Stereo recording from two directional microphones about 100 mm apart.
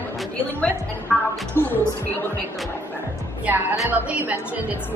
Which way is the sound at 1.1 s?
10° left (ahead or behind).